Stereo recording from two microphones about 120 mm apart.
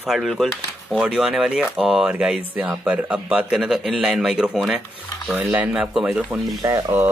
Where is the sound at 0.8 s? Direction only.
10° right (ahead or behind).